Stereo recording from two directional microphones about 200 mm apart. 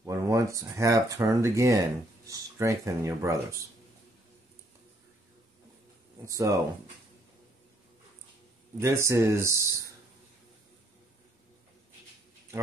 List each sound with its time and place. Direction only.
0.0 s speech: 15° right (ahead or behind)
6.2 s speech: 15° right (ahead or behind)
8.7 s speech: 15° right (ahead or behind)